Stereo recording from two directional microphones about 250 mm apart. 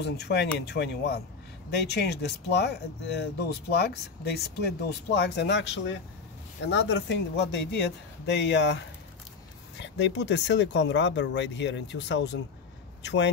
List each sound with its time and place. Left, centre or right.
0.0 s speech: left
9.8 s speech: left